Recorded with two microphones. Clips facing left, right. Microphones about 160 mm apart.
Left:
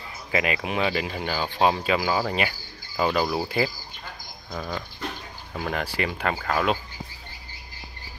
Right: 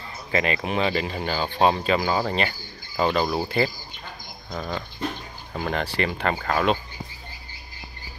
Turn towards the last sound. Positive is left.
turn(degrees=0)  # may be behind; listen again after turning